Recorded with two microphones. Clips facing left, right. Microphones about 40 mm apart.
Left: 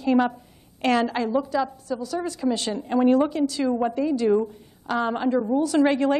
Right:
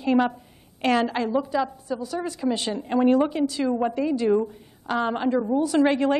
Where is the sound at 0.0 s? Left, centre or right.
Centre.